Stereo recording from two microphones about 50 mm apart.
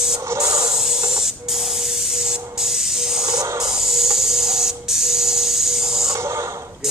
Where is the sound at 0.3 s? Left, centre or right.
Right.